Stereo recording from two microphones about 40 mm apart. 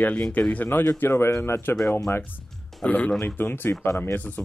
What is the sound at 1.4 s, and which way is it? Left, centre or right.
Speech, left.